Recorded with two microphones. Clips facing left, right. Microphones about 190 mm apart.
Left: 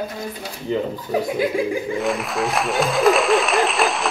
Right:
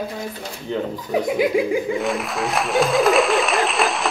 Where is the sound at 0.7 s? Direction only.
5° left (ahead or behind).